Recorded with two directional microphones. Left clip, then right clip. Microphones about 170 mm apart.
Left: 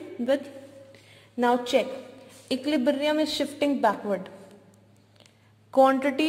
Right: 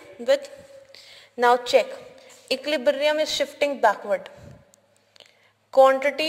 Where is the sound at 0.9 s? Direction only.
35° right (ahead or behind).